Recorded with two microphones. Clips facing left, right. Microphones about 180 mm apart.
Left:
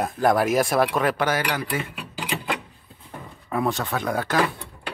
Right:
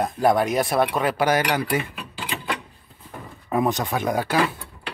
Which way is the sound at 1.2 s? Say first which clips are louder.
Right 3 dB; 15° right (ahead or behind).